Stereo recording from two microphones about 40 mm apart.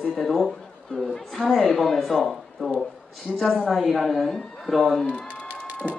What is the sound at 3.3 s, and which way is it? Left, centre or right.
Speech, centre.